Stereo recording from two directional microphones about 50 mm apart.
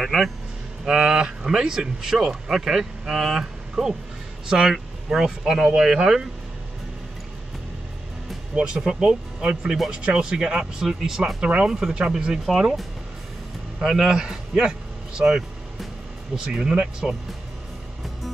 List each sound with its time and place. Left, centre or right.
0.0 s speech: centre
0.8 s speech: centre
8.5 s speech: centre
11.4 s speech: right
13.7 s speech: centre